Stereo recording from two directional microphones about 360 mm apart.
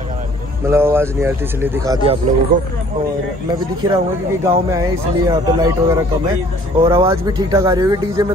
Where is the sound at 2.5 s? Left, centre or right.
Right.